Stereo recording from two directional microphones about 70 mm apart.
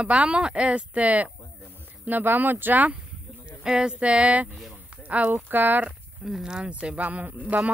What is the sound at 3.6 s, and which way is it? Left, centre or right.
A woman's voice, centre.